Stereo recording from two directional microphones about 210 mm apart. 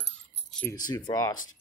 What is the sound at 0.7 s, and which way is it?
Speech, 20° left (ahead or behind).